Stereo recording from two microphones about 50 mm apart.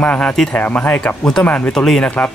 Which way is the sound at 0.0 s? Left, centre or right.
Left.